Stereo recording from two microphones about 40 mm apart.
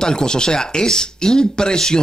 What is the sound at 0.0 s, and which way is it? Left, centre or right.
Speech, centre.